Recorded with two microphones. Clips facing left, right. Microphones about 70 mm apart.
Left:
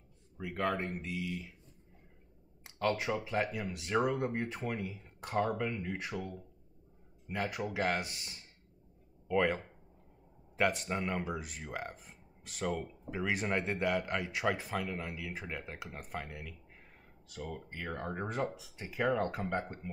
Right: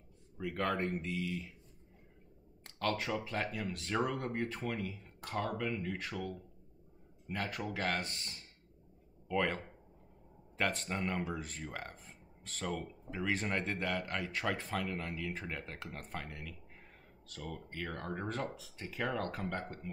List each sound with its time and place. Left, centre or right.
0.4 s speech: centre
2.6 s speech: centre